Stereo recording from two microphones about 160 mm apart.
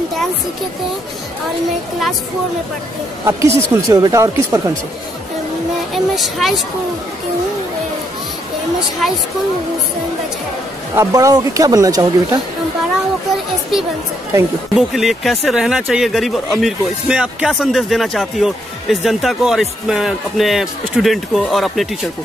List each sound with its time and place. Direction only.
3.3 s speech: 15° right (ahead or behind)
5.9 s speech: centre (ahead or behind)
11.0 s speech: 20° right (ahead or behind)
14.8 s speech: centre (ahead or behind)